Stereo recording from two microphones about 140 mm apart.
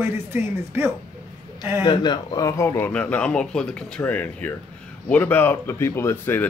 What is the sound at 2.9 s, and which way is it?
Speech, 10° left (ahead or behind).